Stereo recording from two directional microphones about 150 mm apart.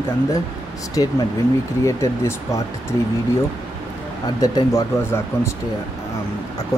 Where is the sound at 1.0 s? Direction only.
25° left (ahead or behind).